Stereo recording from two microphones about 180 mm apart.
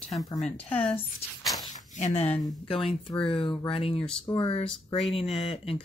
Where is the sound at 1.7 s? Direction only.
40° left (ahead or behind).